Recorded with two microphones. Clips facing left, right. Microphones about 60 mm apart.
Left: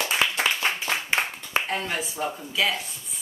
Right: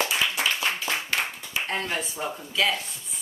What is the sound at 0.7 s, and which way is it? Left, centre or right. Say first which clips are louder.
Clapping: left 2 dB; left.